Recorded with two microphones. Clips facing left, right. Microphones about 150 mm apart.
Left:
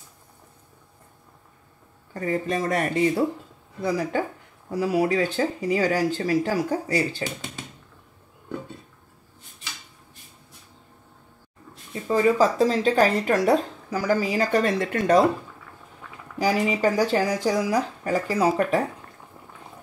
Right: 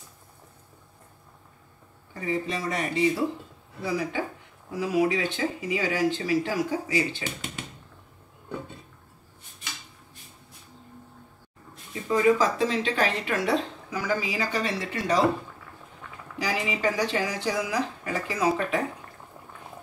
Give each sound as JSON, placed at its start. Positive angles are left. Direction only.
{"t": 2.1, "sound": "speech", "side_deg": 45}
{"t": 3.8, "sound": "speech", "side_deg": 40}
{"t": 12.1, "sound": "speech", "side_deg": 35}
{"t": 16.4, "sound": "speech", "side_deg": 40}